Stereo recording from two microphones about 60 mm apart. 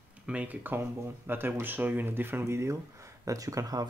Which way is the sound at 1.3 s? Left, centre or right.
Right.